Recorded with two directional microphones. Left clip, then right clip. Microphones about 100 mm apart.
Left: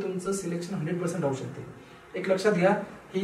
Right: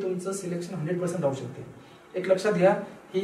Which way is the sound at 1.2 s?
25° left (ahead or behind).